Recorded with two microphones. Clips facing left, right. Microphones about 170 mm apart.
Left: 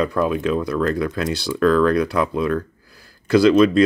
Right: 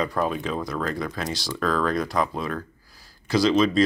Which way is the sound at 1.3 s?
65° left (ahead or behind).